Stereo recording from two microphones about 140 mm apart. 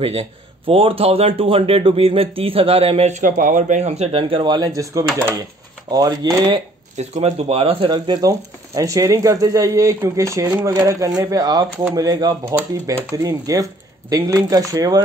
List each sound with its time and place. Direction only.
0.0 s speech: 40° right (ahead or behind)
6.5 s speech: 50° right (ahead or behind); by 15.0 s 25° right (ahead or behind)